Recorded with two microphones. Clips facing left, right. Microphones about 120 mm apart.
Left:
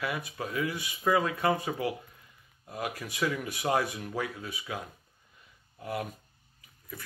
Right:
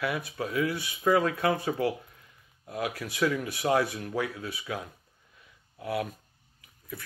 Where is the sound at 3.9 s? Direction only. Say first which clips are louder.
Right 3 dB; 55° right (ahead or behind).